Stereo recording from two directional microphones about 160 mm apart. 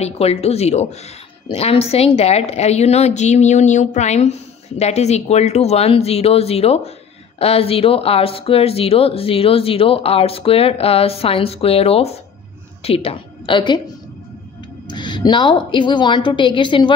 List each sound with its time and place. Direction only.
0.0 s a woman's voice: 40° left (ahead or behind)
14.9 s a woman's voice: 30° left (ahead or behind)